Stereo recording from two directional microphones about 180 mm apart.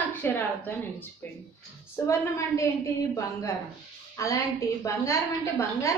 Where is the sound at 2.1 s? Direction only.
15° left (ahead or behind).